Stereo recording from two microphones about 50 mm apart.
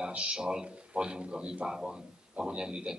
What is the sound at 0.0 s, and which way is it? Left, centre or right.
Speech, right.